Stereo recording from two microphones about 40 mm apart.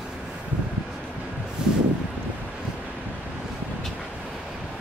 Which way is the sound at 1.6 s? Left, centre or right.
Centre.